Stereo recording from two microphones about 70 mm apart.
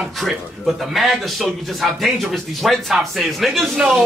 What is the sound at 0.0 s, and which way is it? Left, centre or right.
A man's voice, centre.